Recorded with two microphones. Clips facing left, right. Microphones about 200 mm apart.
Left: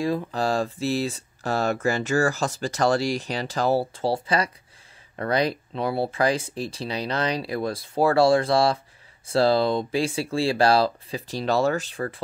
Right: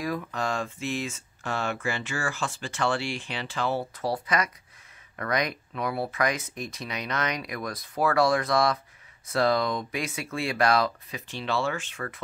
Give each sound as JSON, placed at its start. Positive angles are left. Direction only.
{"t": 0.0, "sound": "speech", "side_deg": 30}